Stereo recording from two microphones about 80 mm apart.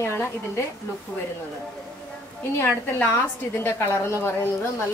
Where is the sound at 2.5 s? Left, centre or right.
Left.